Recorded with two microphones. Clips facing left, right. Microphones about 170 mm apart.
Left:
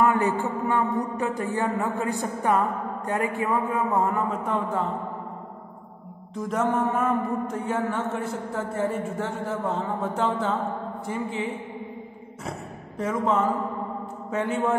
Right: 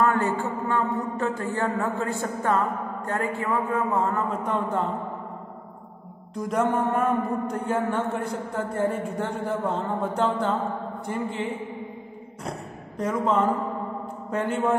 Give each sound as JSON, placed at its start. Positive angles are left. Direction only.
{"t": 0.0, "sound": "a woman's voice", "side_deg": 20}
{"t": 6.3, "sound": "a man's voice", "side_deg": 0}
{"t": 12.4, "sound": "a man's voice", "side_deg": 5}